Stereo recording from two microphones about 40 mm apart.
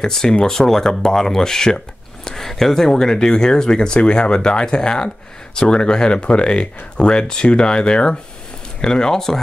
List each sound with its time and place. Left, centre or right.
0.0 s speech: centre